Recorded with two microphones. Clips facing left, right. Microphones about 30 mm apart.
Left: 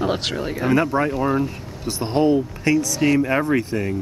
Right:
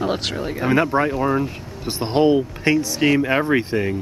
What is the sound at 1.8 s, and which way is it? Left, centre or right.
Speech, right.